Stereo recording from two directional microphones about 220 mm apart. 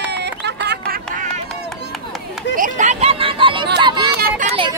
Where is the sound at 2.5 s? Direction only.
35° right (ahead or behind).